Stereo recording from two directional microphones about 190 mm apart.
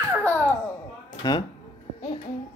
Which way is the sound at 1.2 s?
20° left (ahead or behind).